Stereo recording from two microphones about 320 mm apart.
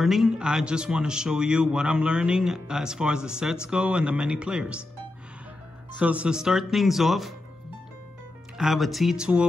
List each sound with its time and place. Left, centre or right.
0.0 s a man's voice: centre
5.9 s a man's voice: centre
8.5 s a man's voice: centre